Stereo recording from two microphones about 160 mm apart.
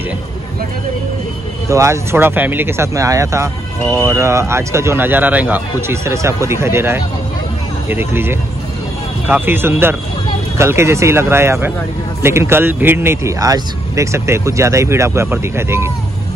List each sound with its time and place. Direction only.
1.7 s speech: 20° right (ahead or behind)